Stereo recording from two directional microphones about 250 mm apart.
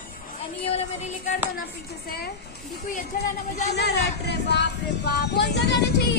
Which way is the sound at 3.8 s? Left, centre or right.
Left.